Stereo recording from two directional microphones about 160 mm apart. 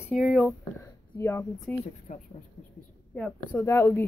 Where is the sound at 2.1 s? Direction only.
50° left (ahead or behind).